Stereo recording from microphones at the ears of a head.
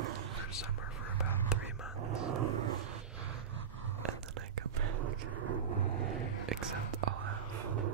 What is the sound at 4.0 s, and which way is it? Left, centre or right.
Whispering, right.